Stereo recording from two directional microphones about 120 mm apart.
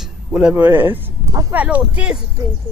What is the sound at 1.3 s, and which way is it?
Speech, 30° right (ahead or behind).